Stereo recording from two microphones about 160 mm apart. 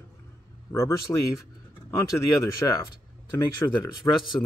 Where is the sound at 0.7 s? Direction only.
15° left (ahead or behind).